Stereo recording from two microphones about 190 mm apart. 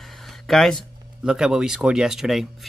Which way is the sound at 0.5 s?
Centre (ahead or behind).